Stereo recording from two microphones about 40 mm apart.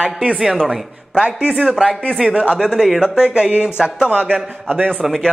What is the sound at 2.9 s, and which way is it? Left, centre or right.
Speech, centre.